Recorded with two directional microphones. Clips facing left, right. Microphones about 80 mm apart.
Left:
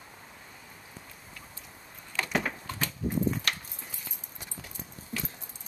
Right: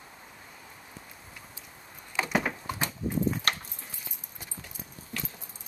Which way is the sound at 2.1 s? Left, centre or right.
Centre.